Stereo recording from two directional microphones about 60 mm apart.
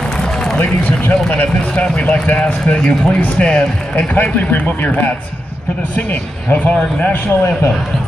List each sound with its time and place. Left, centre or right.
0.2 s a sound: centre
0.6 s speech: left
3.9 s speech: left